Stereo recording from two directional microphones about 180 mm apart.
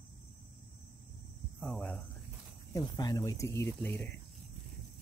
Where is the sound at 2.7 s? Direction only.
20° left (ahead or behind).